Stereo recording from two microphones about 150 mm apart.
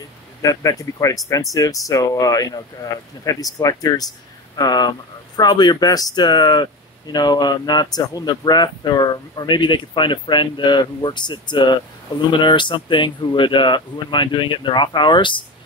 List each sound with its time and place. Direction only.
0.4 s speech: 25° left (ahead or behind)